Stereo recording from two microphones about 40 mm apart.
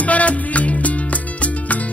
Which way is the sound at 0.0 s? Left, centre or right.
Left.